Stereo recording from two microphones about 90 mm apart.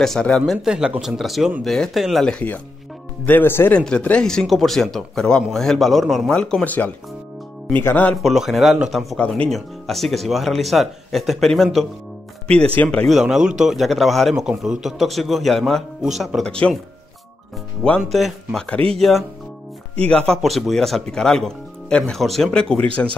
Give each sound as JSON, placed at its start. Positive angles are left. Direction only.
{"t": 0.0, "sound": "speech", "side_deg": 5}
{"t": 0.5, "sound": "speech", "side_deg": -5}
{"t": 2.2, "sound": "speech", "side_deg": 15}
{"t": 3.7, "sound": "speech", "side_deg": 15}
{"t": 8.2, "sound": "speech", "side_deg": 0}
{"t": 9.1, "sound": "speech", "side_deg": 10}
{"t": 13.1, "sound": "speech", "side_deg": -5}
{"t": 16.4, "sound": "speech", "side_deg": 10}
{"t": 18.1, "sound": "speech", "side_deg": 0}
{"t": 20.1, "sound": "speech", "side_deg": 10}
{"t": 20.4, "sound": "speech", "side_deg": 0}